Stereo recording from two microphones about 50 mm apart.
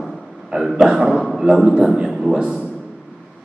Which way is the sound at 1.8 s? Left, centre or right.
Centre.